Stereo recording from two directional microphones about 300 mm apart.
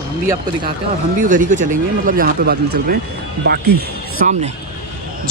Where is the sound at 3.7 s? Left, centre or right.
Right.